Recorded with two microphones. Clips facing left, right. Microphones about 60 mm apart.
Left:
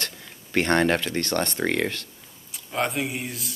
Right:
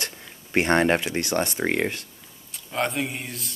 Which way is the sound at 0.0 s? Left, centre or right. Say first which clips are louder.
Even; centre.